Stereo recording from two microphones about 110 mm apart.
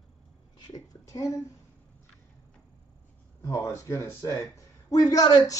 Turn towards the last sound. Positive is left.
turn(degrees=40)  # may be behind; listen again after turning